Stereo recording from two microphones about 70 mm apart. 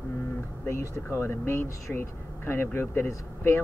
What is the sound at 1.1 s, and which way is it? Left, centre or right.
Speech, left.